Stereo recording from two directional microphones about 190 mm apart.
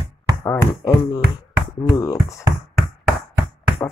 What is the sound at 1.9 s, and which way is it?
Speech, 15° left (ahead or behind).